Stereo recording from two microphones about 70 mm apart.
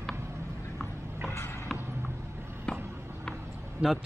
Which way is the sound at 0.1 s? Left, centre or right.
Right.